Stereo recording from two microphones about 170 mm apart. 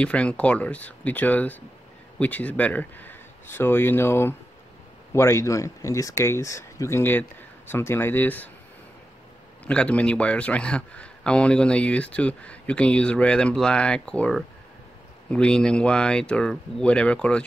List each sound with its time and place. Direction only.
0.0 s a man's voice: 5° left (ahead or behind)
9.7 s a man's voice: 5° left (ahead or behind)